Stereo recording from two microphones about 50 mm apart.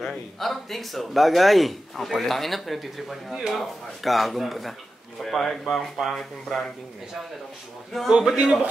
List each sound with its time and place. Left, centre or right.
0.0 s speech: centre
8.1 s speech: centre